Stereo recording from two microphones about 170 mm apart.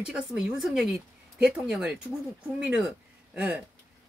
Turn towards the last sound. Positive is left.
turn(degrees=-5)  # may be behind; listen again after turning